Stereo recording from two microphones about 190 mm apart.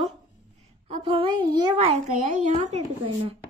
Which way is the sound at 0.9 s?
25° right (ahead or behind).